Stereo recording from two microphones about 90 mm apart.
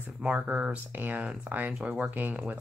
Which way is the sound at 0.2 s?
15° right (ahead or behind).